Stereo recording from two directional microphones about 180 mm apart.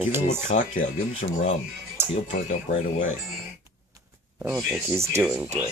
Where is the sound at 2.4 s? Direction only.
45° left (ahead or behind).